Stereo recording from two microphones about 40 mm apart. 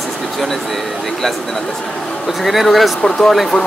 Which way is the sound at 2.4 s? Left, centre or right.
Centre.